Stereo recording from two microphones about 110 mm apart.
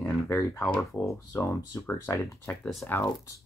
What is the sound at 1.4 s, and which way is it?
Speech, 20° left (ahead or behind).